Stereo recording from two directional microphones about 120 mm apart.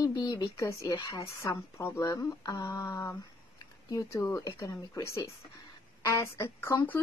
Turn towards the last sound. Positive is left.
turn(degrees=25)  # may be behind; listen again after turning